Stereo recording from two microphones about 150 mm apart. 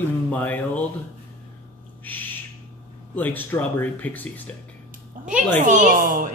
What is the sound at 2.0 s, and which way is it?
Owl, 10° left (ahead or behind).